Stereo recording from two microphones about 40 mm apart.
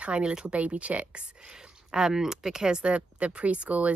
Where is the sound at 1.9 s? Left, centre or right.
Centre.